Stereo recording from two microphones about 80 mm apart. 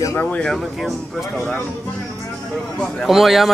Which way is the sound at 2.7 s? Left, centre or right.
Centre.